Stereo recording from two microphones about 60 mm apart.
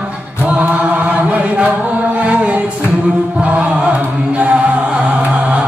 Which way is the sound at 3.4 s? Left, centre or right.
Centre.